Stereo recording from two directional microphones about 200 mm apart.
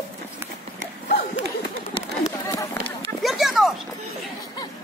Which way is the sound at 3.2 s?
Centre (ahead or behind).